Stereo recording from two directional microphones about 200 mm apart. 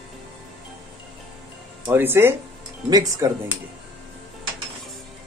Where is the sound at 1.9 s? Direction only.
10° right (ahead or behind).